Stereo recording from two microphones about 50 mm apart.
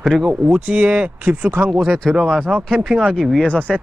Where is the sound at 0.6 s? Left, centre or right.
Right.